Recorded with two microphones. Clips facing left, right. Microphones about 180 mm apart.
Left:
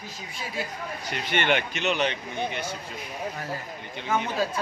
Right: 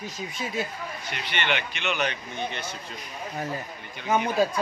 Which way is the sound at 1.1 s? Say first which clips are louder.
Left 4 dB; 45° left (ahead or behind).